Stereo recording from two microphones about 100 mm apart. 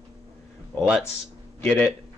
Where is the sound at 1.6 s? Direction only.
15° left (ahead or behind).